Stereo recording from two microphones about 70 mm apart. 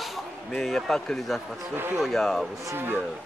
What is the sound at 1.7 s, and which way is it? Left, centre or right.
Speech, right.